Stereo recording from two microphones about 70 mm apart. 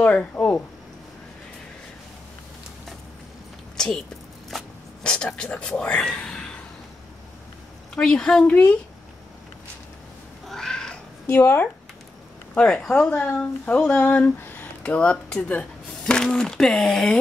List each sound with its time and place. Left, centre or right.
0.0 s speech: left
3.7 s a sound: centre
5.0 s speech: centre
7.9 s a woman's voice: centre
8.5 s speech: left
10.4 s cat: centre
11.2 s speech: left
12.5 s a woman's voice: centre
13.1 s speech: left; by 17.2 s centre